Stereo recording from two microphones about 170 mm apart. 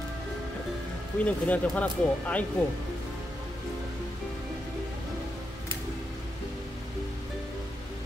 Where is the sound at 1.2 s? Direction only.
10° left (ahead or behind).